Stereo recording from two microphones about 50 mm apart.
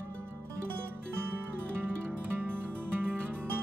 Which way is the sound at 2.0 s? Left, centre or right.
Right.